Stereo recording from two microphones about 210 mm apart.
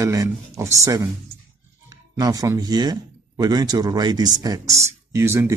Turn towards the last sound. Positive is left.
turn(degrees=-10)  # may be behind; listen again after turning